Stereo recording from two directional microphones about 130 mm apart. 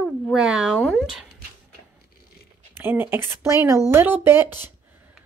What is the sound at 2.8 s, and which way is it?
Speech, 15° right (ahead or behind).